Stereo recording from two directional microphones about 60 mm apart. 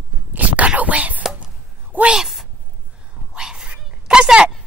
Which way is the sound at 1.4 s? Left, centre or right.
Right.